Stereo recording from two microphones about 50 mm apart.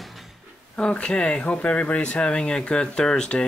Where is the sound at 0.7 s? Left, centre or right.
Left.